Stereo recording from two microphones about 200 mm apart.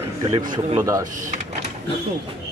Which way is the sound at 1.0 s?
40° right (ahead or behind).